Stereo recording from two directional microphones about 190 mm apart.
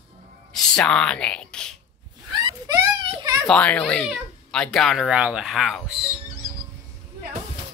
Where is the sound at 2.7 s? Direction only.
15° right (ahead or behind).